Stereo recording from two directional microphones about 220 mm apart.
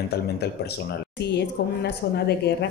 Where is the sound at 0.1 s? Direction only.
45° left (ahead or behind).